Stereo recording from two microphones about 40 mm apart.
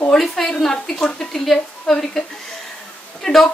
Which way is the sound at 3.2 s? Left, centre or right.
Centre.